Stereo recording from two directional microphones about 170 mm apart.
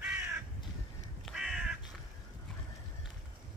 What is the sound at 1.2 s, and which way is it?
Crow, centre (ahead or behind).